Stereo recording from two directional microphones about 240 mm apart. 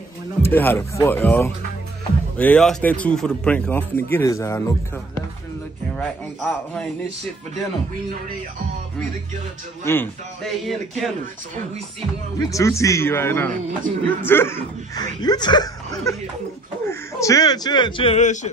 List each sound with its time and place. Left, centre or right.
0.4 s speech: centre
9.8 s speech: centre
12.4 s speech: centre; by 18.5 s left